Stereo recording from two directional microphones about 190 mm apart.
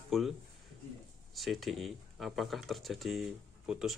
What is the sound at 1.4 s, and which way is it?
Speech, centre (ahead or behind).